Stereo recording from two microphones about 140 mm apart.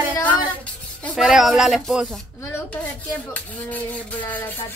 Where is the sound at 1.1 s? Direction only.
Centre (ahead or behind).